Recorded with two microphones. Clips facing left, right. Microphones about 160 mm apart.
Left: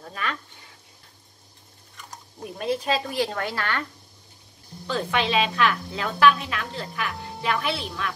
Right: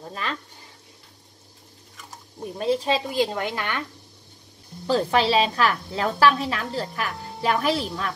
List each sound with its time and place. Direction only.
0.0 s a woman's voice: 30° right (ahead or behind)
2.6 s a woman's voice: 30° right (ahead or behind)
3.0 s a woman's voice: 20° right (ahead or behind)
4.8 s a woman's voice: 35° right (ahead or behind)